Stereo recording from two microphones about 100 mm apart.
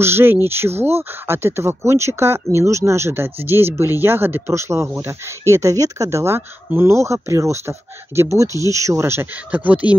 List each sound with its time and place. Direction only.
0.0 s speech: 25° right (ahead or behind)